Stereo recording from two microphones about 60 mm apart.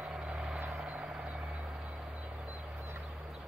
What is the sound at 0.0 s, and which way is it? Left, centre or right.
Vehicle, centre.